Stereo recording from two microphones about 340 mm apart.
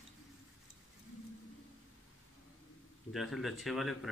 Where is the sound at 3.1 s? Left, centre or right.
Centre.